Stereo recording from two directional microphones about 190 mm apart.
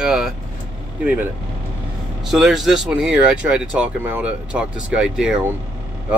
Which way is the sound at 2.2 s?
Centre (ahead or behind).